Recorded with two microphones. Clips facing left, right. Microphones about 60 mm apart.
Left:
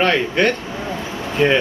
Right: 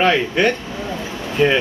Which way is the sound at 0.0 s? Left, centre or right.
Centre.